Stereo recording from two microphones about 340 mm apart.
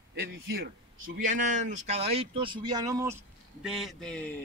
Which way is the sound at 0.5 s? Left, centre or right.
Right.